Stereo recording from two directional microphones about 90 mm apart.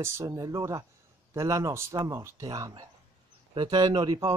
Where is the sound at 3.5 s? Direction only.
55° right (ahead or behind).